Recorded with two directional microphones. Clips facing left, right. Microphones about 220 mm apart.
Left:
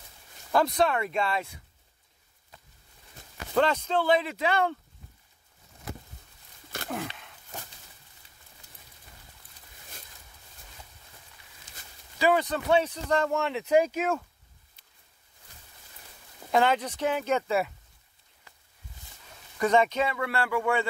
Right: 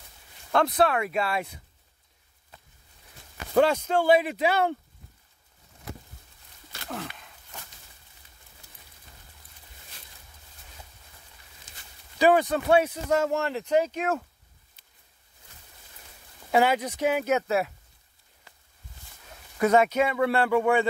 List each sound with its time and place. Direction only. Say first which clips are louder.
0.5 s speech: right 1 dB; centre (ahead or behind)
3.5 s speech: right 3 dB; 10° right (ahead or behind)
12.2 s speech: right 4 dB; 15° right (ahead or behind)
13.7 s speech: left 2 dB; 10° left (ahead or behind)
16.5 s speech: right 2 dB; 10° right (ahead or behind)
19.6 s speech: right 3 dB; 10° right (ahead or behind)
20.2 s speech: right 6 dB; 20° right (ahead or behind)